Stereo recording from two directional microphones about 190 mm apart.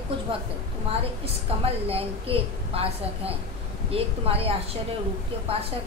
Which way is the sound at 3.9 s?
30° right (ahead or behind).